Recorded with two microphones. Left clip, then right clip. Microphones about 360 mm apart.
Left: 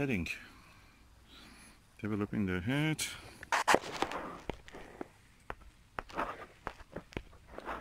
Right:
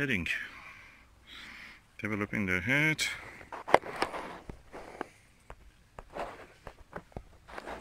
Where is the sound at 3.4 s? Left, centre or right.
Left.